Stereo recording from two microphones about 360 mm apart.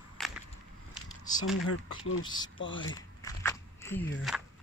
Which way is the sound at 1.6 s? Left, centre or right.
Left.